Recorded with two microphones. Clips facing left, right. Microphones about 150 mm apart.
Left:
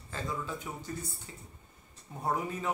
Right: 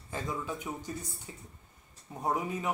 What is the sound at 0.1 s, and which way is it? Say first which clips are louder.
Speech: right 1 dB; 15° right (ahead or behind).